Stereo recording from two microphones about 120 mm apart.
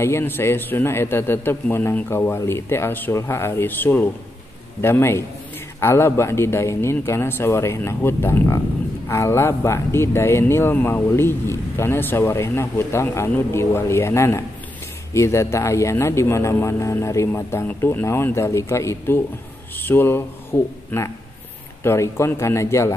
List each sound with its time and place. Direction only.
0.0 s speech: 20° left (ahead or behind)